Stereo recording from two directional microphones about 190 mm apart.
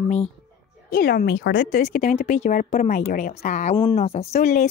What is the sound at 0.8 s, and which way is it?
Speech, 50° left (ahead or behind).